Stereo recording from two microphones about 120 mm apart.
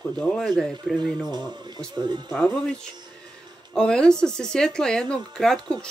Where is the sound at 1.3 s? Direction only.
35° right (ahead or behind).